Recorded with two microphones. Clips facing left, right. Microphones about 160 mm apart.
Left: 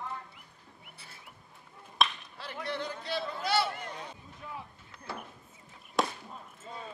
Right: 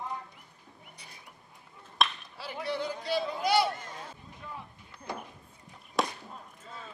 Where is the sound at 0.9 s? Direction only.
15° right (ahead or behind).